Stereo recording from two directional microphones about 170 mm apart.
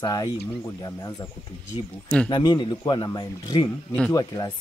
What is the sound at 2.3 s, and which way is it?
Speech, 25° left (ahead or behind).